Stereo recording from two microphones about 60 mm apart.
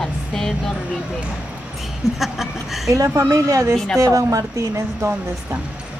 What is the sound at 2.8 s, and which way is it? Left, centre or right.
Speech, right.